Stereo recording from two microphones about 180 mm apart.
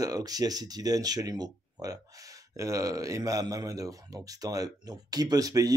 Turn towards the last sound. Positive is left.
turn(degrees=-20)  # may be behind; listen again after turning